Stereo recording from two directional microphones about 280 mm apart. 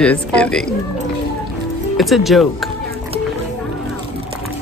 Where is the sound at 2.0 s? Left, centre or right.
Centre.